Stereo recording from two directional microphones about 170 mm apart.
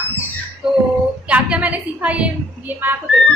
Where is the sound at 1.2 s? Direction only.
5° right (ahead or behind).